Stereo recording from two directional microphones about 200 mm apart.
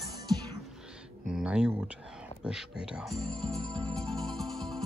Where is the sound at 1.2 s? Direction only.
5° right (ahead or behind).